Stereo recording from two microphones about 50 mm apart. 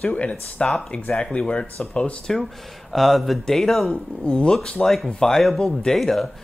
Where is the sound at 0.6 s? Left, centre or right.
Centre.